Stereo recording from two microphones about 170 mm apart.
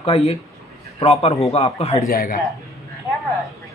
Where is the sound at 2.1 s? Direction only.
60° left (ahead or behind).